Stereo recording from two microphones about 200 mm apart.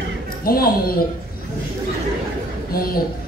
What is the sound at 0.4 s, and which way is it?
Speech, 50° left (ahead or behind).